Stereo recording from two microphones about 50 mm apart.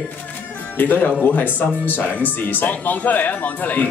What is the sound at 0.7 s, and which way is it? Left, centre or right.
Speech, left.